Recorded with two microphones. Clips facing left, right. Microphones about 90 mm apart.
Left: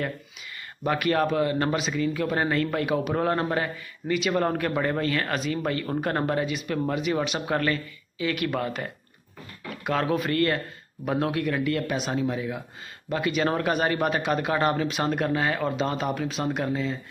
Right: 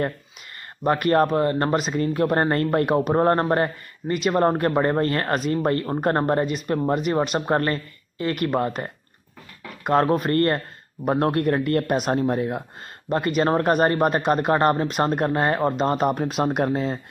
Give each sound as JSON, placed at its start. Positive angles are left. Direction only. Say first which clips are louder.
{"t": 0.8, "sound": "speech", "louder": "right 5 dB", "side_deg": -40}